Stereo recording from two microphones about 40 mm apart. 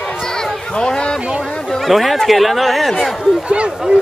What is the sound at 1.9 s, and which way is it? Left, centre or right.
Speech, centre.